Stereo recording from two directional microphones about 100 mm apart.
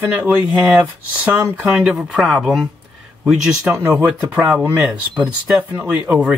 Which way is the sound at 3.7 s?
20° right (ahead or behind).